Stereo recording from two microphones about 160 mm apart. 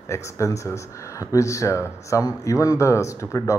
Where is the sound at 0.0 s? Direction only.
20° left (ahead or behind).